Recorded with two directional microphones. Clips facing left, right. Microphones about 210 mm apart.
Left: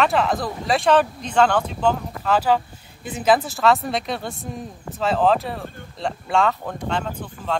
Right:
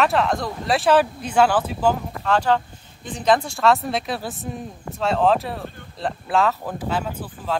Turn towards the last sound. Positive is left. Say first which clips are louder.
# even
turn(degrees=-5)  # may be behind; listen again after turning